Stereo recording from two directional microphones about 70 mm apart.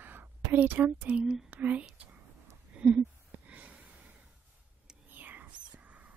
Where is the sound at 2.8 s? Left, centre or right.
Right.